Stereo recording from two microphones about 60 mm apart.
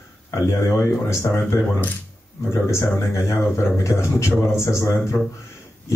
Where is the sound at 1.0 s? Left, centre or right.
Left.